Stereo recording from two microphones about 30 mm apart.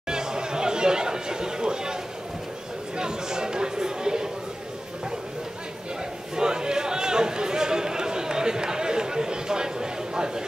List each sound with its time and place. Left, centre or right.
0.1 s chatter: right
3.0 s chatter: right
6.3 s a sound: right